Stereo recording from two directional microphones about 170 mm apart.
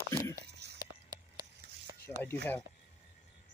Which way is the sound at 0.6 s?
80° right.